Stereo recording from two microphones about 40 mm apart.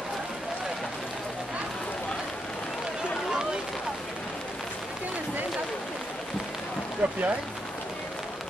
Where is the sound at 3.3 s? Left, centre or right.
Centre.